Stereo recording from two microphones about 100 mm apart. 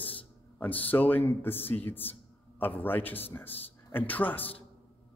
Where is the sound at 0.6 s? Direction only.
15° left (ahead or behind).